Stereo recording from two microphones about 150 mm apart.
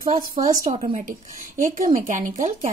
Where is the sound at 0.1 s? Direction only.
55° right (ahead or behind).